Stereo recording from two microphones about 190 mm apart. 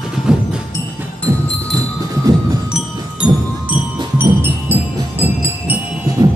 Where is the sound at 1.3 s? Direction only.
15° right (ahead or behind).